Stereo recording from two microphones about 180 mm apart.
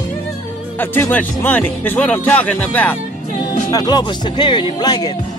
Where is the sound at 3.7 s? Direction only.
20° left (ahead or behind).